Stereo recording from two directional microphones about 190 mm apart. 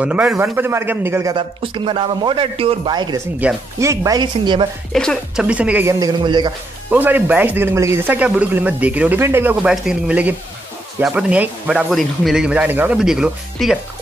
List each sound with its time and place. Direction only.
0.0 s speech: 5° right (ahead or behind)
1.3 s a man's voice: 25° right (ahead or behind)
3.3 s speech: 10° right (ahead or behind)
4.9 s speech: 5° left (ahead or behind); by 6.5 s 25° right (ahead or behind)
6.9 s speech: 10° right (ahead or behind)